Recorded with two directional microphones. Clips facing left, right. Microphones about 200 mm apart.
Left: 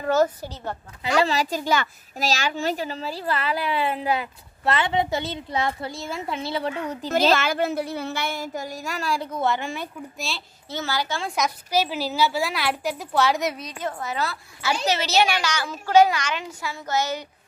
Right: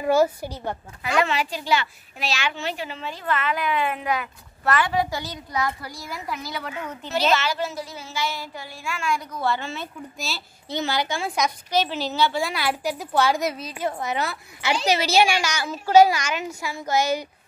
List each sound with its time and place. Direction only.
0.0 s a woman's voice: 10° right (ahead or behind)
1.1 s a child's voice: 35° left (ahead or behind)
7.3 s speech: 55° left (ahead or behind); by 9.8 s 15° left (ahead or behind)
10.1 s a woman's voice: centre (ahead or behind)
10.7 s a woman's voice: 20° right (ahead or behind)
11.2 s a woman's voice: centre (ahead or behind)